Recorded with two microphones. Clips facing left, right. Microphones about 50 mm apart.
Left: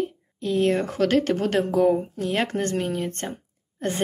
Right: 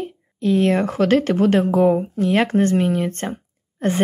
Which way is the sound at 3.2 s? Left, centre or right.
Right.